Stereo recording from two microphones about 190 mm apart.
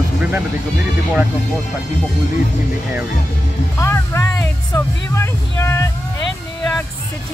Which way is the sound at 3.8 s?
15° left (ahead or behind).